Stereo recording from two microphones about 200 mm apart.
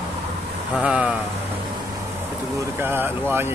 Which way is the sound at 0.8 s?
5° right (ahead or behind).